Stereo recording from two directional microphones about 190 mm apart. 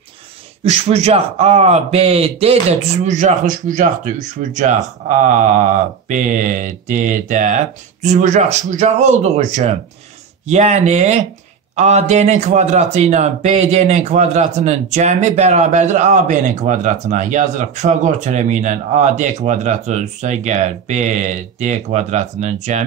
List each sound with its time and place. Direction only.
0.7 s a man's voice: 35° right (ahead or behind)